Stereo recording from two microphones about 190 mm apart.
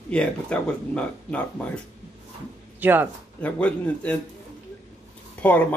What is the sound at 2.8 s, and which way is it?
Speech, 10° right (ahead or behind).